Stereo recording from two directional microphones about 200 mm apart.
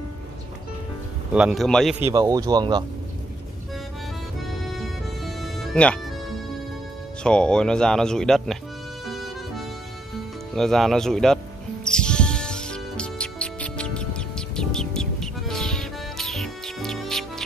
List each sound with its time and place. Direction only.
1.3 s speech: centre (ahead or behind)
2.0 s speech: 15° right (ahead or behind)
7.2 s speech: 5° left (ahead or behind)
10.5 s speech: centre (ahead or behind)
11.8 s music: 5° left (ahead or behind)